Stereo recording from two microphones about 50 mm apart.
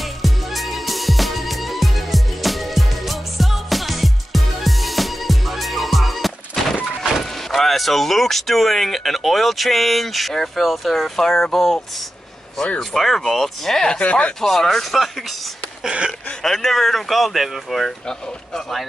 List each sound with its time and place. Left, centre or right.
0.2 s music: centre
7.0 s speech: centre
12.9 s speech: centre
13.9 s speech: left
14.4 s speech: centre
15.8 s a sound: centre
16.4 s speech: centre